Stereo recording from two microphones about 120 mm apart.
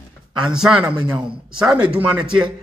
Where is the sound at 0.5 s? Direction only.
5° right (ahead or behind).